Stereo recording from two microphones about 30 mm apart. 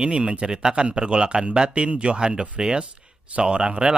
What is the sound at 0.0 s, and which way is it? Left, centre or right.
Speech, right.